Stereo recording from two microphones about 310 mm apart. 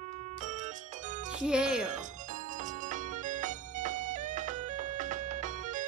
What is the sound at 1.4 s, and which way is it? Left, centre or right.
Speech, centre.